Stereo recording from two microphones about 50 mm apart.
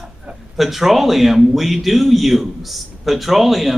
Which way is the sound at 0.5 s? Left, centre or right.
Centre.